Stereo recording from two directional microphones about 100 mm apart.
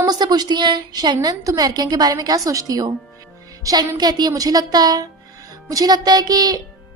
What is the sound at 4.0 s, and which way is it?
A woman's voice, 45° right (ahead or behind).